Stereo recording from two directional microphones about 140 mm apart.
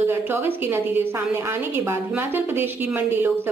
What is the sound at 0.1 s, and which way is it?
A woman's voice, 15° right (ahead or behind).